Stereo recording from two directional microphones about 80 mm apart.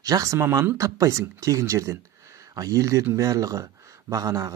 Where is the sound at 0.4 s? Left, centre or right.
Right.